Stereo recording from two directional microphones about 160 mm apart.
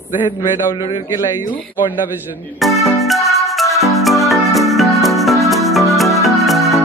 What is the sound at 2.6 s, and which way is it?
Music, centre (ahead or behind).